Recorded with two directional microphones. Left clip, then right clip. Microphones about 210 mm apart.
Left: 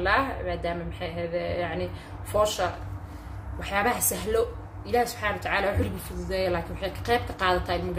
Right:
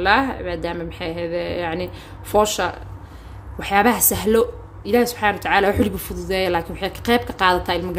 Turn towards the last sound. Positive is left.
turn(degrees=-45)  # may be behind; listen again after turning